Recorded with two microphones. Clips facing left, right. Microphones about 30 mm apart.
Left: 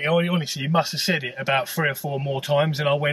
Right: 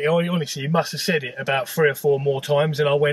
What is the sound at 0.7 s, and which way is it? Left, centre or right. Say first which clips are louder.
Speech: right 1 dB; left.